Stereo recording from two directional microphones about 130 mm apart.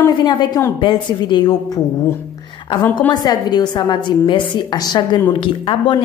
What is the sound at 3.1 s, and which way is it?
A woman's voice, 30° left (ahead or behind).